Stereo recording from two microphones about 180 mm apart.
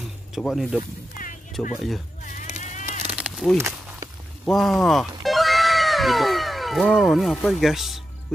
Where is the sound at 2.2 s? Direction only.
40° left (ahead or behind).